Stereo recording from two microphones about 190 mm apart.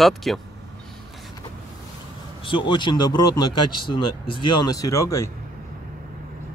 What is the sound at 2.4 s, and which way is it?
Speech, 25° left (ahead or behind).